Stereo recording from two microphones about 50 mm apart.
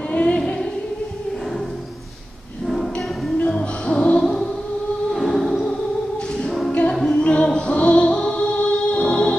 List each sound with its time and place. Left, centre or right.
0.1 s music: left
2.6 s music: centre
3.4 s music: centre
5.1 s music: centre
6.9 s music: centre